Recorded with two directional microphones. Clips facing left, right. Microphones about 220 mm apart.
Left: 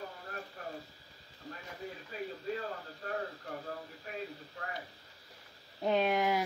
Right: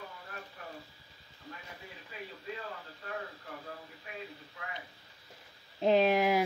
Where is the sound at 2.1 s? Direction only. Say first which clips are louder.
Left 5 dB; 40° left (ahead or behind).